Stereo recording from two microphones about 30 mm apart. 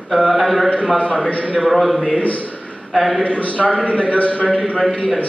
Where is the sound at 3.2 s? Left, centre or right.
Left.